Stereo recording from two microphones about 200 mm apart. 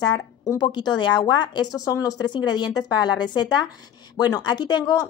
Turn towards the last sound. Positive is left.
turn(degrees=20)  # may be behind; listen again after turning